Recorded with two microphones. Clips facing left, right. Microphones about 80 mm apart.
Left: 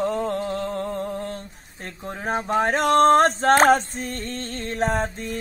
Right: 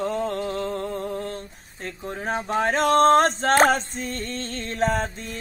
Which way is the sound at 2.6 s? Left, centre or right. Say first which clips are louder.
Even; left.